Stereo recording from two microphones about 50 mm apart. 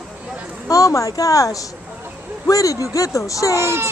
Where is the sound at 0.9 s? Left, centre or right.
Left.